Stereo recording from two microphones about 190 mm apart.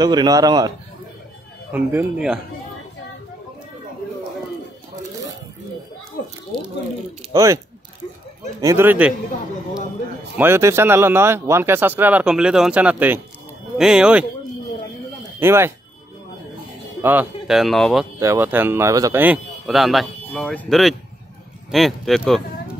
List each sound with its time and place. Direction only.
0.0 s a man's voice: 20° right (ahead or behind)
1.7 s speech: 10° right (ahead or behind)
7.3 s speech: 15° right (ahead or behind)
10.3 s speech: 10° right (ahead or behind)
15.4 s speech: 15° right (ahead or behind)
17.0 s speech: 10° right (ahead or behind)
18.2 s speech: 15° right (ahead or behind)